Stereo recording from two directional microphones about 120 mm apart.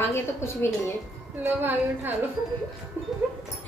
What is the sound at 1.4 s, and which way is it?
Speech, 15° right (ahead or behind).